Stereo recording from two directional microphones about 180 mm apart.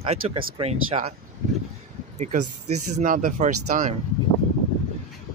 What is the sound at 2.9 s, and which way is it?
Speech, 50° right (ahead or behind).